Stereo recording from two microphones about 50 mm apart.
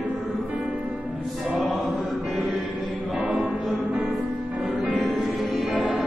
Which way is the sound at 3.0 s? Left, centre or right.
Right.